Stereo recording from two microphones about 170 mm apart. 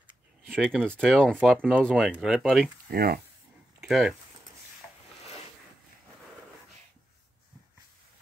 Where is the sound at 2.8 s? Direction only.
60° right (ahead or behind).